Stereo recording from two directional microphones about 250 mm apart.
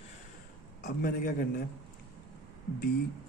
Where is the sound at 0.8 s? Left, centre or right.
Left.